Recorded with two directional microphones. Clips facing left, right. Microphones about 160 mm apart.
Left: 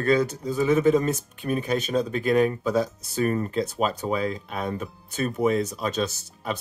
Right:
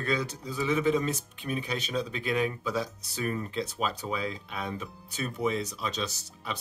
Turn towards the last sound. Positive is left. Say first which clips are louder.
# left 7 dB
turn(degrees=50)  # may be behind; listen again after turning